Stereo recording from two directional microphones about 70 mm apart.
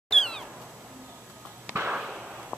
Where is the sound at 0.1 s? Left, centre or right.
Centre.